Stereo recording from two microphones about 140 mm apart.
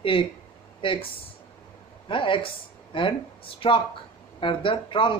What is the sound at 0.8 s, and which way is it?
Speech, 40° left (ahead or behind).